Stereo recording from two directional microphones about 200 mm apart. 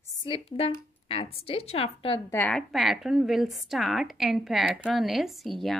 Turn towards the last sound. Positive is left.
turn(degrees=0)  # may be behind; listen again after turning